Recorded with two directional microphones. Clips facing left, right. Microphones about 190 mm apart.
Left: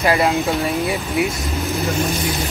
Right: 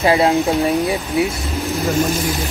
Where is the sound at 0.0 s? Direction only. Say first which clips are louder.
Right 3 dB; 20° right (ahead or behind).